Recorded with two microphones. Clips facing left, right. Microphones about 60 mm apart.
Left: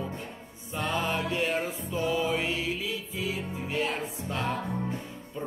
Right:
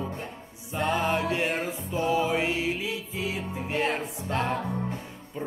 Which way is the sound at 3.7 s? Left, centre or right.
Right.